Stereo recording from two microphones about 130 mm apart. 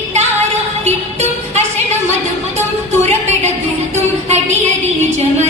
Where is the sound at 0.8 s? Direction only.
55° right (ahead or behind).